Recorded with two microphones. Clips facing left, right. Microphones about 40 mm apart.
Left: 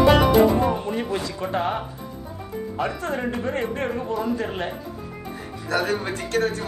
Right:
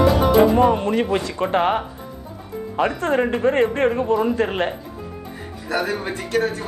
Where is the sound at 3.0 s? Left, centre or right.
Right.